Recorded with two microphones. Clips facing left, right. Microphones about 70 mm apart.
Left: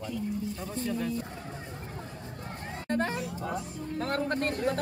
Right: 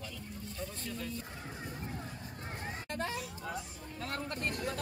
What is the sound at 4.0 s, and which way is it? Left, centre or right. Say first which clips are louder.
Speech: left 8 dB; left.